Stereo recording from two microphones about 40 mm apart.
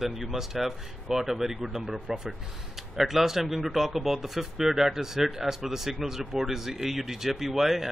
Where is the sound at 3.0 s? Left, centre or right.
Centre.